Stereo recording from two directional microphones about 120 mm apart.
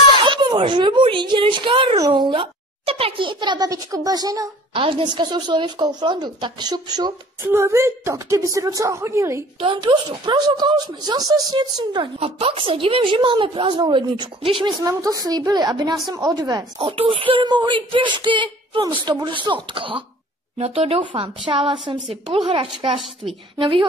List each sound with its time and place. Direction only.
0.2 s a child's voice: 40° right (ahead or behind)
2.0 s a woman's voice: 30° right (ahead or behind)
2.2 s speech: 50° right (ahead or behind); by 4.5 s 30° right (ahead or behind)
4.7 s speech: 45° right (ahead or behind)
7.4 s a woman's voice: 20° right (ahead or behind)
9.6 s speech: 40° right (ahead or behind)
12.2 s speech: 50° right (ahead or behind)
14.8 s speech: 30° right (ahead or behind)
16.8 s speech: 50° right (ahead or behind)
20.5 s speech: 55° right (ahead or behind)
21.0 s speech: 45° right (ahead or behind)